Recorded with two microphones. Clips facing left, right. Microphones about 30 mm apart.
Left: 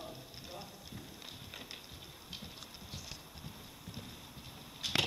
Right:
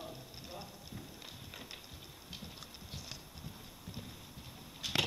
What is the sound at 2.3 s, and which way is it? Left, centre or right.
Clip-clop, centre.